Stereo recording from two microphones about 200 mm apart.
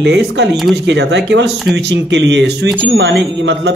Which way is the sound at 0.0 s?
60° right (ahead or behind).